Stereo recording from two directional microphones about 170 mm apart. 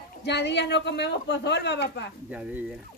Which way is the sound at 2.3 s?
10° right (ahead or behind).